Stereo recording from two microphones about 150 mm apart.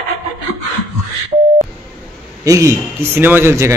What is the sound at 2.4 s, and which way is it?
A man's voice, 20° right (ahead or behind).